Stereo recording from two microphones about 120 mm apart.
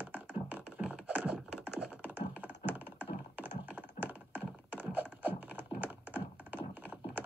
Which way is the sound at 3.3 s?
15° right (ahead or behind).